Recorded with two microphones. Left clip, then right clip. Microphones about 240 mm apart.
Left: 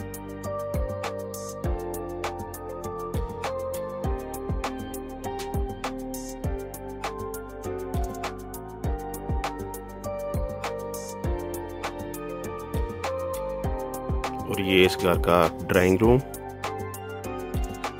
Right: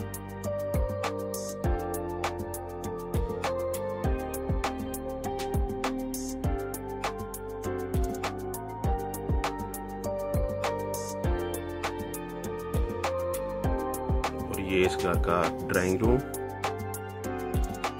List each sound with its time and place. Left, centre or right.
0.7 s music: centre
5.4 s music: centre
10.0 s music: centre
13.3 s music: centre
14.6 s speech: left